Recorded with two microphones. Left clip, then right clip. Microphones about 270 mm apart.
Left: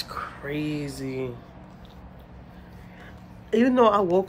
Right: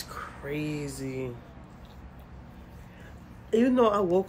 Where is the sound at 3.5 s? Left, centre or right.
Centre.